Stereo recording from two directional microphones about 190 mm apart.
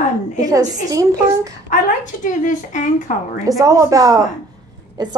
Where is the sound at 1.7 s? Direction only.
40° left (ahead or behind).